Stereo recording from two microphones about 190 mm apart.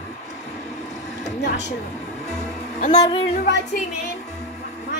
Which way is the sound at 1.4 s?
65° left (ahead or behind).